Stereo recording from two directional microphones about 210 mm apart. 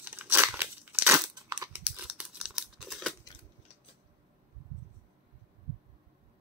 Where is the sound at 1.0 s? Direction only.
15° right (ahead or behind).